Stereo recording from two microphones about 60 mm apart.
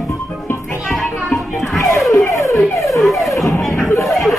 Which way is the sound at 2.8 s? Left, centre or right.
Centre.